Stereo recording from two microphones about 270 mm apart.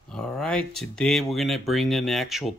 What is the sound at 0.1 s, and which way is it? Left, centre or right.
Speech, centre.